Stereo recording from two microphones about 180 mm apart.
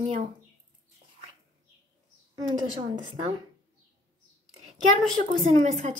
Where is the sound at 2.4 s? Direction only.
25° right (ahead or behind).